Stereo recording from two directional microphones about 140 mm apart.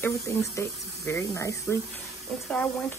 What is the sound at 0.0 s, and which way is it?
Speech, 20° left (ahead or behind).